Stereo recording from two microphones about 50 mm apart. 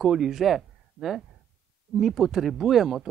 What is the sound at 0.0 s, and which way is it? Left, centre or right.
Speech, centre.